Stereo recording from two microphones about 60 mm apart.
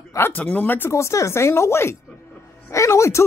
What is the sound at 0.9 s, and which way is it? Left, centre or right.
Speech, left.